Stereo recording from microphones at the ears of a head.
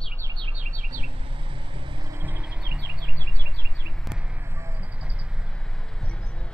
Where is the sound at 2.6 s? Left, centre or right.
Right.